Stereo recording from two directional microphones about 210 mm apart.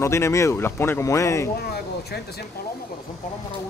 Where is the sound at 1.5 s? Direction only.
50° left (ahead or behind).